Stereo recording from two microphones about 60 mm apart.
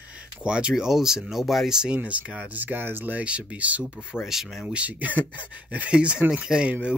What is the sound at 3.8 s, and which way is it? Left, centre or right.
Speech, centre.